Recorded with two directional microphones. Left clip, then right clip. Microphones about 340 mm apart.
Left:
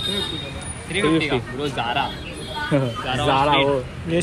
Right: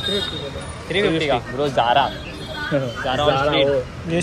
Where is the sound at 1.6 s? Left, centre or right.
Centre.